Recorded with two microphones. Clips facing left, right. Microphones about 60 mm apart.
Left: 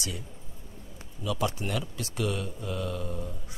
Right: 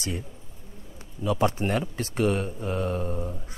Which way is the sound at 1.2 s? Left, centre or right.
Right.